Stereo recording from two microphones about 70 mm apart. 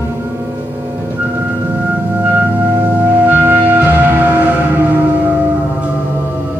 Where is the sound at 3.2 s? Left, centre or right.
Right.